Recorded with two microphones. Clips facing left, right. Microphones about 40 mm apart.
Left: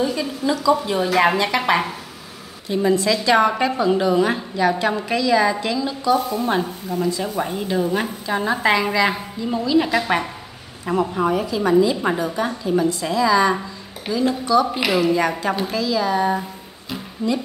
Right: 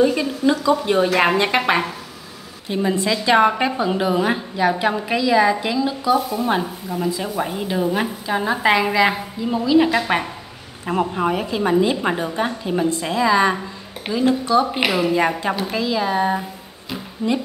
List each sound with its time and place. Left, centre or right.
0.0 s a woman's voice: right
2.9 s a woman's voice: right
10.9 s a woman's voice: right